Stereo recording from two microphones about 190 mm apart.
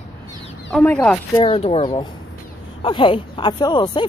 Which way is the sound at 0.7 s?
5° left (ahead or behind).